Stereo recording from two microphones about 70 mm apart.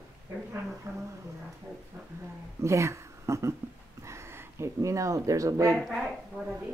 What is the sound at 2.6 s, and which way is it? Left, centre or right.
Speech, right.